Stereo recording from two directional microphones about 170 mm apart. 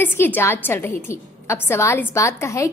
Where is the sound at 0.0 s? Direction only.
10° left (ahead or behind).